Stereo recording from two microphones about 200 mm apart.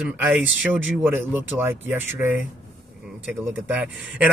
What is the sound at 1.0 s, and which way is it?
Speech, 10° right (ahead or behind).